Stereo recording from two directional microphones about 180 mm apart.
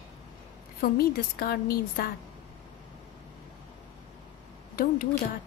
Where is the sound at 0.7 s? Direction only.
55° left (ahead or behind).